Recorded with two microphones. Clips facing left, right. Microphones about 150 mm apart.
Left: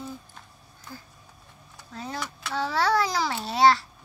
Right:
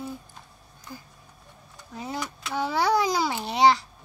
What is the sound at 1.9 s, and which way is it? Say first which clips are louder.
A child's voice: right 2 dB; 15° right (ahead or behind).